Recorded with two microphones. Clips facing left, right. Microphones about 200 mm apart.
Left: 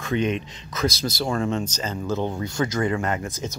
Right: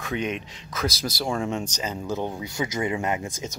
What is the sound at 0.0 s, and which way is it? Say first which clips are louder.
Speech: left 5 dB; 5° right (ahead or behind).